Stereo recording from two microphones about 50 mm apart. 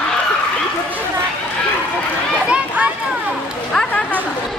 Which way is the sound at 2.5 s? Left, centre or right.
Right.